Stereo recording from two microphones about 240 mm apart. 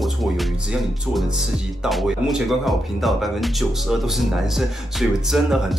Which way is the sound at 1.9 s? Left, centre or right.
Centre.